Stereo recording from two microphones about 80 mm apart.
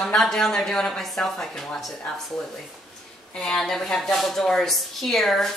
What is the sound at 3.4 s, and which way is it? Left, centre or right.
A woman's voice, centre.